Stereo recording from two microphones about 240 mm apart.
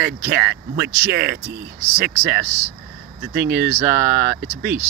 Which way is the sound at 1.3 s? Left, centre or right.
Right.